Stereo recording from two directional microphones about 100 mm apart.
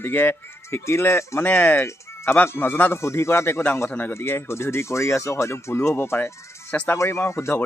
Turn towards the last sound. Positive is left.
turn(degrees=25)  # may be behind; listen again after turning